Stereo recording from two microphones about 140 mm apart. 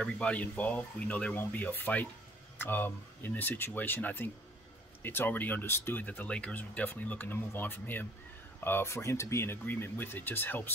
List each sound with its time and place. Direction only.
0.0 s speech: 10° left (ahead or behind)